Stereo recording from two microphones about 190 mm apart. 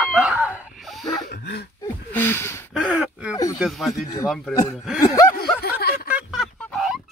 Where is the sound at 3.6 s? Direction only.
Centre (ahead or behind).